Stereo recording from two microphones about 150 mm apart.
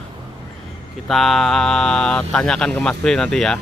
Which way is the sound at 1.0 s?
Centre (ahead or behind).